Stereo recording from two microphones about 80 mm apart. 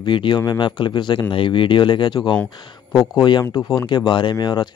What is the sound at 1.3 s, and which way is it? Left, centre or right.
A man's voice, left.